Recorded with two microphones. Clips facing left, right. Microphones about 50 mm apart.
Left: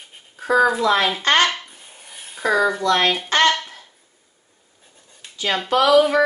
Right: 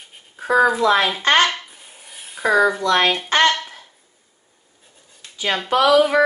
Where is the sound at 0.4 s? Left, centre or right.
Centre.